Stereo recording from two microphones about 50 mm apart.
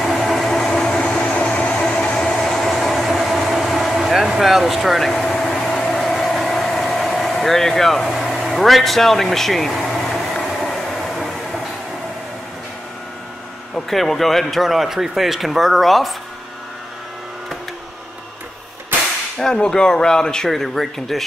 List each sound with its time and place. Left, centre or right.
0.5 s vehicle: centre
2.4 s vehicle: centre
5.7 s a sound: centre
5.9 s vehicle: centre
13.7 s speech: centre
19.3 s speech: centre